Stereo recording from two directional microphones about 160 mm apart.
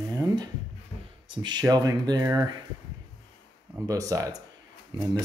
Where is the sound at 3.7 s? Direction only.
20° right (ahead or behind).